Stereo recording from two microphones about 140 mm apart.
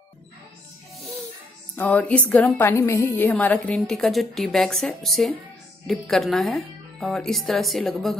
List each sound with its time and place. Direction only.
1.8 s a woman's voice: 10° left (ahead or behind)